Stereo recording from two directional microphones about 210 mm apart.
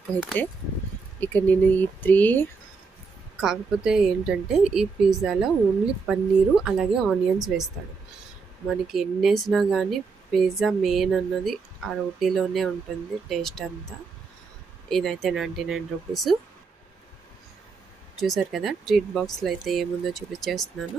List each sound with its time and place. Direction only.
1.2 s speech: 10° left (ahead or behind)
3.3 s speech: 5° right (ahead or behind)
14.9 s speech: centre (ahead or behind)
18.2 s speech: centre (ahead or behind)